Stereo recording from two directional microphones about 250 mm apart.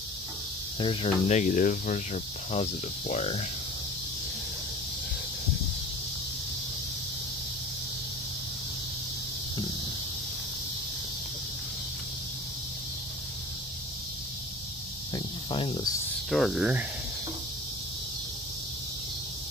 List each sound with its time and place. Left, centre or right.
0.7 s speech: left
15.1 s cricket: centre
16.3 s speech: centre